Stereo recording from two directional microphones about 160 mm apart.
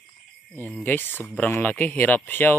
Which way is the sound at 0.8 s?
15° left (ahead or behind).